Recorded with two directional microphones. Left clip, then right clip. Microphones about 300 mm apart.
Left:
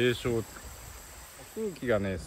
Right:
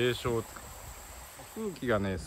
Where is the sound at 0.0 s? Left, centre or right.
Centre.